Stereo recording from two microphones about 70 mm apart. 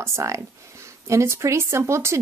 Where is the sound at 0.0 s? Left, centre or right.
Right.